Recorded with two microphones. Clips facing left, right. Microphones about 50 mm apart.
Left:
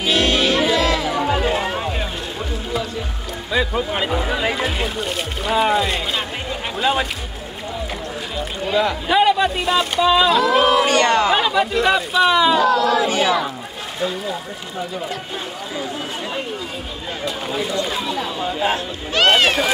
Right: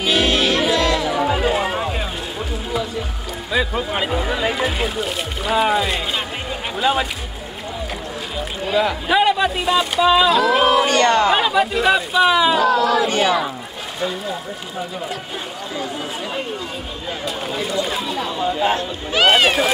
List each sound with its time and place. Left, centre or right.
0.0 s music: centre
3.5 s speech: centre
8.4 s speech: centre
10.9 s speech: centre
11.2 s speech: centre
17.2 s speech: centre